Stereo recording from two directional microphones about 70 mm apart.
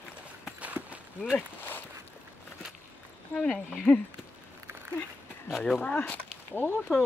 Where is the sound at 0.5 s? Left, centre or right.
Right.